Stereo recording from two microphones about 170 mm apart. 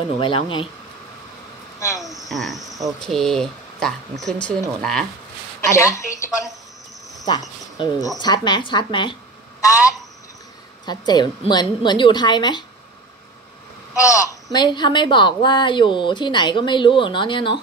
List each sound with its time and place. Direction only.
0.2 s a woman's voice: 30° left (ahead or behind)
2.0 s cricket: centre (ahead or behind)
3.0 s speech: centre (ahead or behind)
5.7 s a woman's voice: 15° left (ahead or behind)
13.9 s a woman's voice: 20° left (ahead or behind)